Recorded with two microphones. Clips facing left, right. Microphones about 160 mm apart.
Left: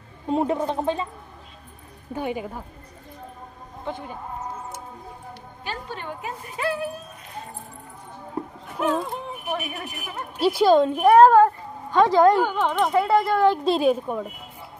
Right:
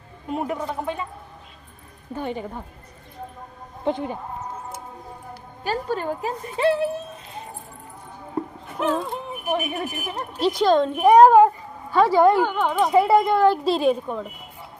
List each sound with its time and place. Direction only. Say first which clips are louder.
0.3 s speech: left 4 dB; 30° left (ahead or behind)
2.1 s speech: left 1 dB; 10° left (ahead or behind)
5.6 s a woman's voice: right 9 dB; 40° right (ahead or behind)
8.7 s speech: even; centre (ahead or behind)
9.5 s speech: right 6 dB; 25° right (ahead or behind)
10.4 s speech: left 1 dB; 5° left (ahead or behind)
11.0 s a woman's voice: right 3 dB; 15° right (ahead or behind)
12.9 s speech: right 5 dB; 15° right (ahead or behind)
13.7 s a woman's voice: even; centre (ahead or behind)